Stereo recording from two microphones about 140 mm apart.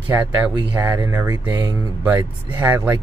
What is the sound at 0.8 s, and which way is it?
Speech, 20° right (ahead or behind).